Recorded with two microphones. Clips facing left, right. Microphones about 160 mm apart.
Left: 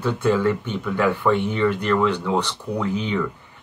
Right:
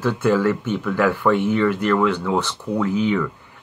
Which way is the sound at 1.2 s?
Centre (ahead or behind).